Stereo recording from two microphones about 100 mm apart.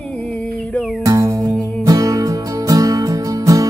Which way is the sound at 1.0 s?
35° right (ahead or behind).